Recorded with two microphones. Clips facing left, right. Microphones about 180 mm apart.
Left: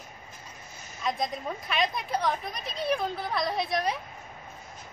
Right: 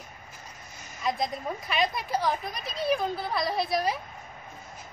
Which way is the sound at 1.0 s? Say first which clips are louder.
Right 1 dB; centre (ahead or behind).